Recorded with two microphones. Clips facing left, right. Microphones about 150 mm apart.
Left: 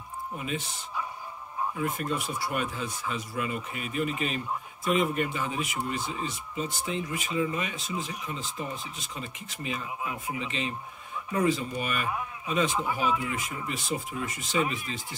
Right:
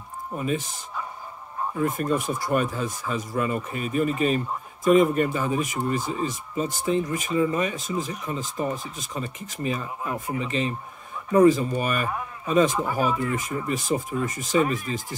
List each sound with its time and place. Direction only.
0.4 s speech: 40° right (ahead or behind)